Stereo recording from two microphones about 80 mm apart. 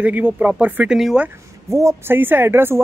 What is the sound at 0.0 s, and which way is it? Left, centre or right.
Speech, centre.